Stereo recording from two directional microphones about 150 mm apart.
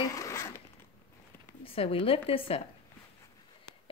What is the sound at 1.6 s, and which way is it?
Speech, 40° left (ahead or behind).